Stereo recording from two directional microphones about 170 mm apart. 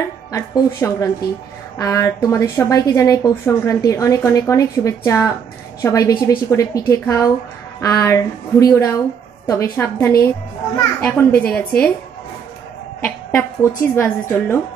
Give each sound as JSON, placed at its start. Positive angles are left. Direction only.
{"t": 0.3, "sound": "a woman's voice", "side_deg": 20}
{"t": 13.0, "sound": "a woman's voice", "side_deg": 10}